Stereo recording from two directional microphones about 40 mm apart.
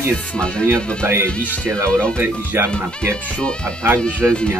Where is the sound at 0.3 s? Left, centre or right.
Left.